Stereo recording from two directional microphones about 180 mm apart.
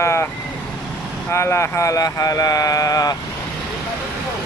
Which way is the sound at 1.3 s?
15° left (ahead or behind).